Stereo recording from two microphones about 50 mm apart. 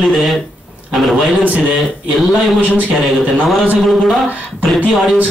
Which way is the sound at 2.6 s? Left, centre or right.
Right.